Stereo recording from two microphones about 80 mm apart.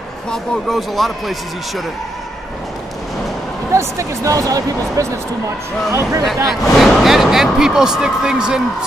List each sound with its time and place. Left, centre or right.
0.3 s speech: centre
3.7 s speech: right
6.2 s speech: centre